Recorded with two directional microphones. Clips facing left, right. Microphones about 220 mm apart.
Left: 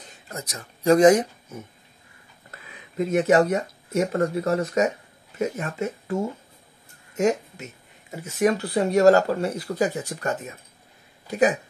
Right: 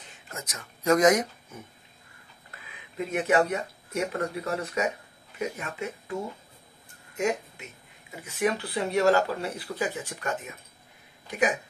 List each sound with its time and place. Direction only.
0.3 s speech: 35° left (ahead or behind)
3.1 s speech: 40° left (ahead or behind)
8.2 s speech: 45° left (ahead or behind)